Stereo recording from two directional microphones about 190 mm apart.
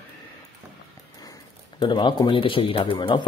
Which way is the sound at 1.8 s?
25° left (ahead or behind).